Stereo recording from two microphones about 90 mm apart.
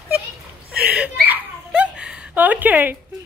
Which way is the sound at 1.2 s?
15° right (ahead or behind).